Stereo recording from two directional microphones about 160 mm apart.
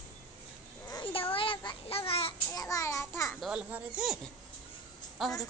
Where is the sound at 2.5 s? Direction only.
20° left (ahead or behind).